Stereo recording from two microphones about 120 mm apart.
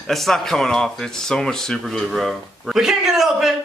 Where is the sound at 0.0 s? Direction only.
Centre (ahead or behind).